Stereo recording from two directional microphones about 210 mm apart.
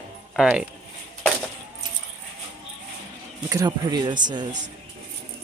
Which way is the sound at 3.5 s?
15° right (ahead or behind).